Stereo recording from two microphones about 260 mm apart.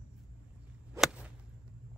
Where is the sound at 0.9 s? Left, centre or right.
Centre.